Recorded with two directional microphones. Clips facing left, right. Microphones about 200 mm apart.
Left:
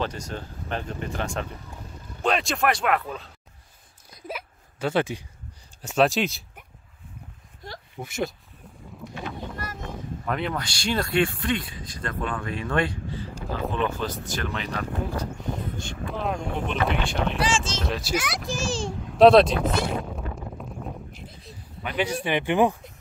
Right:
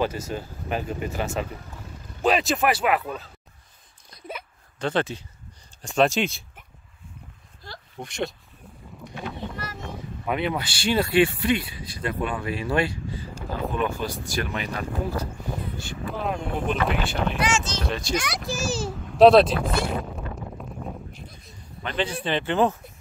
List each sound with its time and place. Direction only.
0.0 s speech: 5° right (ahead or behind)
4.1 s a sound: 5° left (ahead or behind)
5.8 s speech: 5° left (ahead or behind)
8.0 s speech: 5° left (ahead or behind)
10.2 s speech: 5° right (ahead or behind)
17.4 s speech: 30° left (ahead or behind)
17.8 s speech: 5° left (ahead or behind)
21.8 s speech: 10° left (ahead or behind)